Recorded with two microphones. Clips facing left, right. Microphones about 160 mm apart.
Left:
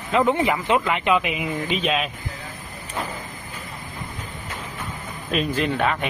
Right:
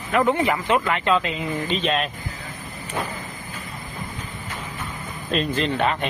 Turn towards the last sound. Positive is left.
turn(degrees=5)  # may be behind; listen again after turning